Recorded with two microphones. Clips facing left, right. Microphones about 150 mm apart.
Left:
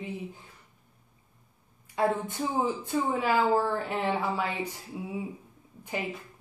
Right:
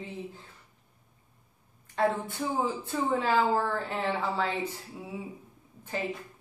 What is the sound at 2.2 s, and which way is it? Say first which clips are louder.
A woman's voice: left 1 dB; 15° left (ahead or behind).